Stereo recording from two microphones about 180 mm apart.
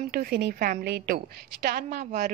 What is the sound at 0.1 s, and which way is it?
A woman's voice, 60° right (ahead or behind).